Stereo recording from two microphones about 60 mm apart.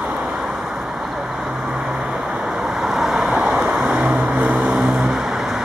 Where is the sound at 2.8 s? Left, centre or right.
Centre; by 4.8 s right.